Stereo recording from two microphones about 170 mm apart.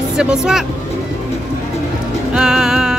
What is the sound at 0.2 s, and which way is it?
Speech, 5° right (ahead or behind).